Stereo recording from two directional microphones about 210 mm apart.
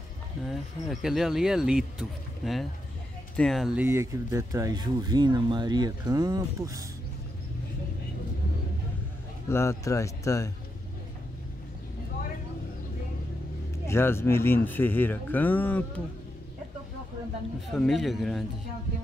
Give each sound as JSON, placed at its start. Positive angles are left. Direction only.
{"t": 0.4, "sound": "speech", "side_deg": 0}
{"t": 9.5, "sound": "speech", "side_deg": 10}
{"t": 13.8, "sound": "speech", "side_deg": 10}
{"t": 17.6, "sound": "speech", "side_deg": 0}